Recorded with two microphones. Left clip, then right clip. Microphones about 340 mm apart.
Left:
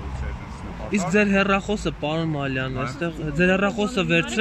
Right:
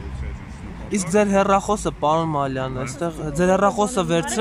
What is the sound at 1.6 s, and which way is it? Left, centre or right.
Speech, right.